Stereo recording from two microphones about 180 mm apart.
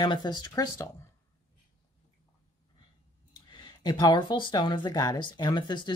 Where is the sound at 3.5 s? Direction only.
25° left (ahead or behind).